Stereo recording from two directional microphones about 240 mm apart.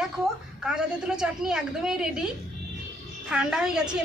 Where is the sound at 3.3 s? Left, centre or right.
Centre.